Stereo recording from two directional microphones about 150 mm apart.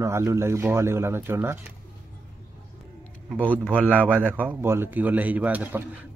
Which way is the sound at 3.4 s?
10° left (ahead or behind).